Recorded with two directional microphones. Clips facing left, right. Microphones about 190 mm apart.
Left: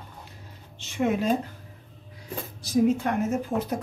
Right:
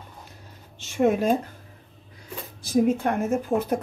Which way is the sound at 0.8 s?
45° right (ahead or behind).